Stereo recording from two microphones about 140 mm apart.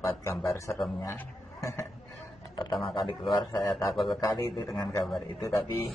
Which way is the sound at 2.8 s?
35° left (ahead or behind).